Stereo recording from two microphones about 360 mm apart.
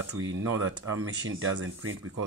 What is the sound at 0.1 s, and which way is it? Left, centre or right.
Speech, right.